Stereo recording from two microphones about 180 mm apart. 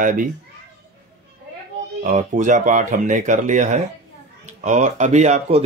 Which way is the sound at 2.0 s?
45° right (ahead or behind).